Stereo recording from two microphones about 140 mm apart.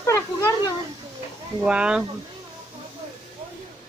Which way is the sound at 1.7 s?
5° right (ahead or behind).